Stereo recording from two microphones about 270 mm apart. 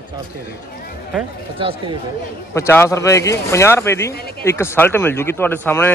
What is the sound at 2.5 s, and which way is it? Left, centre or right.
Speech, centre.